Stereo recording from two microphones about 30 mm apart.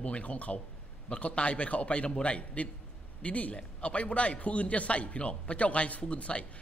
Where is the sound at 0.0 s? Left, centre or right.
Left.